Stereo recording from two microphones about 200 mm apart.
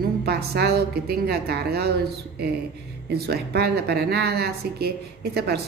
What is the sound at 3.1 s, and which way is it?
A woman's voice, 55° right (ahead or behind).